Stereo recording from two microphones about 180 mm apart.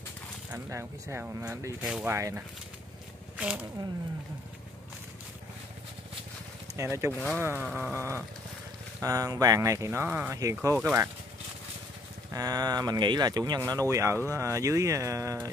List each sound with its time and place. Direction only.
0.5 s speech: 15° right (ahead or behind)
6.8 s speech: 15° right (ahead or behind)
7.1 s speech: 10° left (ahead or behind)
7.7 s speech: 10° right (ahead or behind)
12.3 s speech: 20° right (ahead or behind)